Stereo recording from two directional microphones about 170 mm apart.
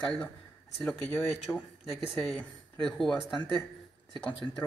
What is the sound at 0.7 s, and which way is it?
Speech, 5° left (ahead or behind).